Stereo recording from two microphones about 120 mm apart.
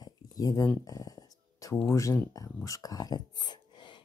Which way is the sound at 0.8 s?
30° left (ahead or behind).